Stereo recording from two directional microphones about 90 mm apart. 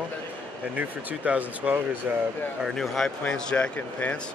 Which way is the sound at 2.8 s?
5° left (ahead or behind).